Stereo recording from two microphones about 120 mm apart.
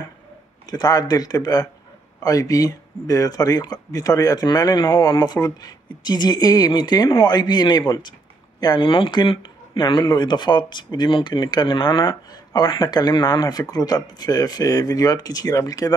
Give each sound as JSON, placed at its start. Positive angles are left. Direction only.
{"t": 0.7, "sound": "speech", "side_deg": 35}